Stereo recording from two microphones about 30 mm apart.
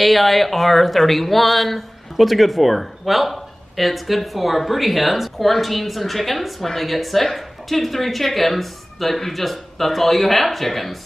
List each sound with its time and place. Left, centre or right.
0.0 s speech: centre